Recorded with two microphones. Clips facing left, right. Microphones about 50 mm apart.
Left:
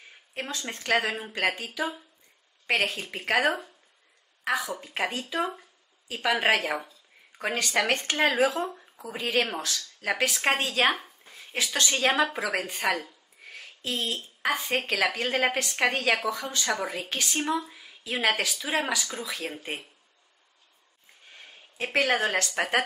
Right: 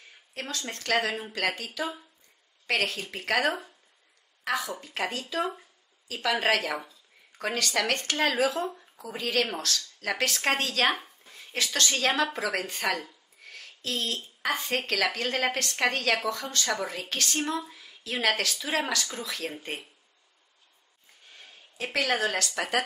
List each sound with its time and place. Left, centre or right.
0.3 s a woman's voice: centre
21.4 s speech: left